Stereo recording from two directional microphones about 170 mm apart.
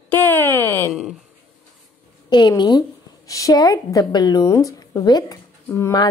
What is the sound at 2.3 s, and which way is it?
A woman's voice, 25° left (ahead or behind).